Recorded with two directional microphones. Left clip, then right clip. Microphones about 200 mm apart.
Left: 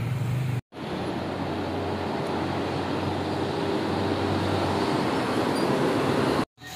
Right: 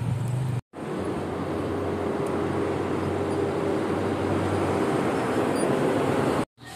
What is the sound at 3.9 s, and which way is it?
Vehicle, 50° left (ahead or behind).